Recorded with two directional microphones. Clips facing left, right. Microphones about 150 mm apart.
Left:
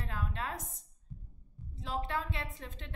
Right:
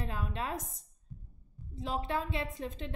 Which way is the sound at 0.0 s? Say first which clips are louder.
Right 2 dB; 20° right (ahead or behind).